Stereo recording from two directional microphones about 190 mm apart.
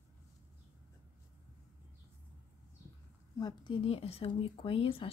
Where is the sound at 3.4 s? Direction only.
20° left (ahead or behind).